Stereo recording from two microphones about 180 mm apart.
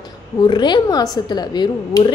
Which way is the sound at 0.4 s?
25° left (ahead or behind).